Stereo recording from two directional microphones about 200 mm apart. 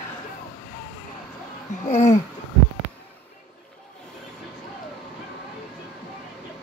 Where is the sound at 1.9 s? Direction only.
35° left (ahead or behind).